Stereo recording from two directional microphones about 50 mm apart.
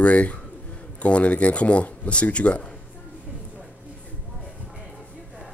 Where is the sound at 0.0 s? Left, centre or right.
Left.